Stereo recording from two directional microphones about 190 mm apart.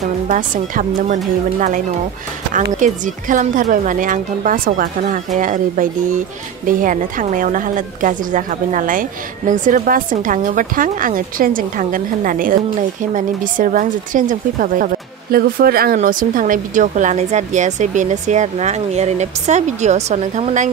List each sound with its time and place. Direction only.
0.0 s speech: 40° right (ahead or behind)
2.8 s a woman's voice: 40° right (ahead or behind)